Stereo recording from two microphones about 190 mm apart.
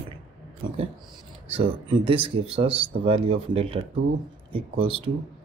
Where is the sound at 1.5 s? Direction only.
30° right (ahead or behind).